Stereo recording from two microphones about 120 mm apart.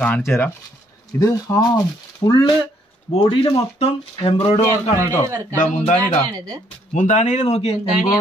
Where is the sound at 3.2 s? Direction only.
45° left (ahead or behind).